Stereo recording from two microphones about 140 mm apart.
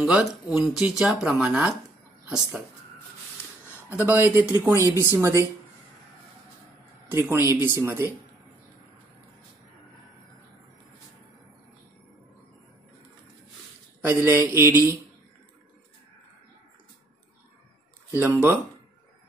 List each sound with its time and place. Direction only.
0.0 s speech: 5° right (ahead or behind)
4.1 s speech: 15° right (ahead or behind)
7.1 s speech: 15° right (ahead or behind)
14.0 s speech: 20° right (ahead or behind)
18.1 s speech: 15° right (ahead or behind)